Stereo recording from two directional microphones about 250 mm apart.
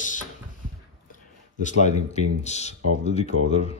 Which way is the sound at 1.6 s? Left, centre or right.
Left.